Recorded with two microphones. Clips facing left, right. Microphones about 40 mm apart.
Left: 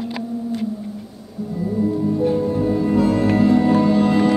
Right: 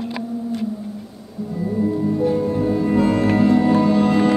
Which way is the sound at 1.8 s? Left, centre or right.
Right.